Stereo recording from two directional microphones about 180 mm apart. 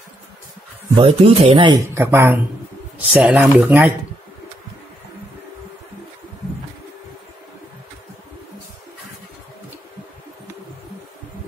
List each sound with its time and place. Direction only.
0.9 s speech: 30° right (ahead or behind)
2.0 s speech: 15° right (ahead or behind)